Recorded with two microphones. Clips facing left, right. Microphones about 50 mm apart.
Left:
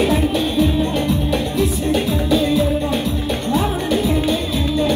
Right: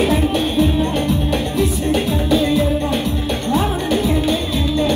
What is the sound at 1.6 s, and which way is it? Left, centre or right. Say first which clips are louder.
Music: right 1 dB; right.